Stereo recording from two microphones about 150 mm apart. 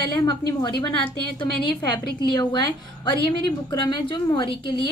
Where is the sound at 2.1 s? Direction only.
30° left (ahead or behind).